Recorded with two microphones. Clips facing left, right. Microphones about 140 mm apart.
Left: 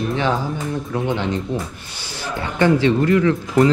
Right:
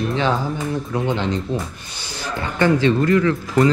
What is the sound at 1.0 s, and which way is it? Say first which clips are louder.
Speech: even; 15° left (ahead or behind).